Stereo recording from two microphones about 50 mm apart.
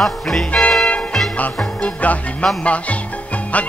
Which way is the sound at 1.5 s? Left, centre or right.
Left.